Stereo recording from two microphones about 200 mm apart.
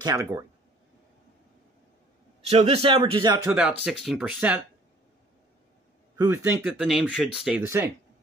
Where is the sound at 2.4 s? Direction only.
30° right (ahead or behind).